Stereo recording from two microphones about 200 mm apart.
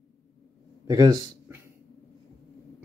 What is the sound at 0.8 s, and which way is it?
Speech, 15° right (ahead or behind).